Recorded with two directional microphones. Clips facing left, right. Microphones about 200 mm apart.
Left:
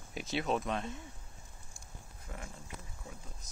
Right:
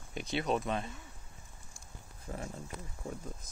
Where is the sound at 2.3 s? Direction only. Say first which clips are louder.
Right 6 dB; 30° right (ahead or behind).